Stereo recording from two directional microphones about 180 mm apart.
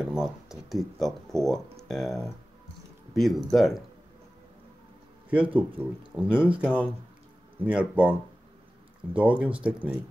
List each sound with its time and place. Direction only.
0.0 s speech: 5° right (ahead or behind)
5.3 s speech: 5° right (ahead or behind)